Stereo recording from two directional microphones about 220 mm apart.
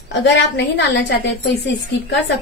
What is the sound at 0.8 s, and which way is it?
Speech, 50° left (ahead or behind).